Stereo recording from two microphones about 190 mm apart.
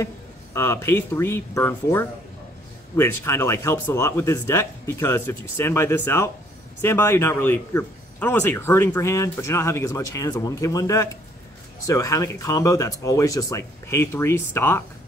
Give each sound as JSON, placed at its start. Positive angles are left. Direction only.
{"t": 0.0, "sound": "speech", "side_deg": 15}